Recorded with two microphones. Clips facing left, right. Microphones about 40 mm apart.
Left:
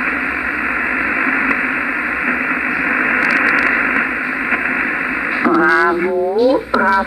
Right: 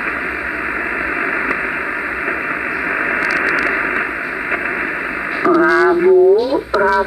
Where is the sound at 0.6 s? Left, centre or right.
Centre.